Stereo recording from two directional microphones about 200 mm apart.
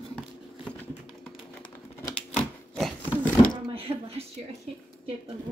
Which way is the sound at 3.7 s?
30° right (ahead or behind).